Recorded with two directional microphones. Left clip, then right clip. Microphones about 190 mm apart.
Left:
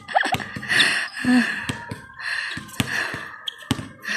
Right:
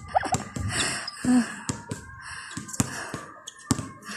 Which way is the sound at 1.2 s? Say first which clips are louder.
Left 3 dB; 20° left (ahead or behind).